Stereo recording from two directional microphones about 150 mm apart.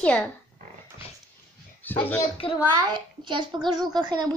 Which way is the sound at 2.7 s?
30° right (ahead or behind).